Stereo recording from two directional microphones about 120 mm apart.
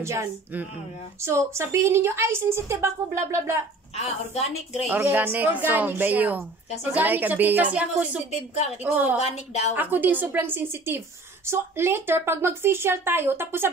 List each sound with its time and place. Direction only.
0.0 s a woman's voice: 20° right (ahead or behind)
3.9 s a woman's voice: 65° left (ahead or behind)
4.8 s a woman's voice: 15° right (ahead or behind)
8.3 s a woman's voice: 65° left (ahead or behind)
8.9 s a woman's voice: 15° right (ahead or behind)
9.2 s a woman's voice: 65° left (ahead or behind)
9.8 s a woman's voice: 15° right (ahead or behind)